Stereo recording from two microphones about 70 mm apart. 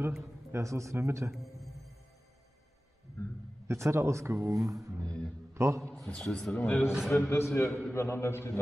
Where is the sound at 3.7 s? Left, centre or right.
Right.